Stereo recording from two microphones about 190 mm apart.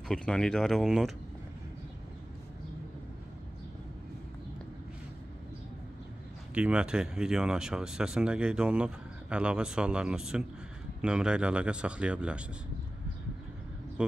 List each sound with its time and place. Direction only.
0.1 s speech: 5° left (ahead or behind)
6.5 s speech: 5° right (ahead or behind)